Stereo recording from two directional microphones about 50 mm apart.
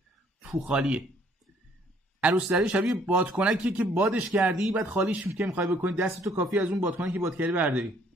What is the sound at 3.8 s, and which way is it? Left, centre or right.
Speech, right.